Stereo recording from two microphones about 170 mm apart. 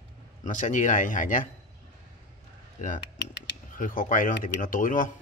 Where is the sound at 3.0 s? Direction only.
90° left.